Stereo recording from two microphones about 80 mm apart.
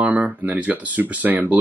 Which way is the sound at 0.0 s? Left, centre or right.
Centre.